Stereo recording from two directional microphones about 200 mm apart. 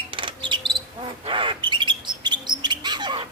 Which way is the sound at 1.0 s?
25° right (ahead or behind).